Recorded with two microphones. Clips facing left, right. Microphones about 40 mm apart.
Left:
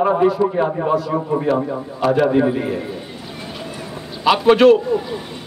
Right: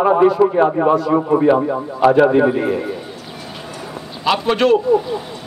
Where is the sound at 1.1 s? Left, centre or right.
Centre.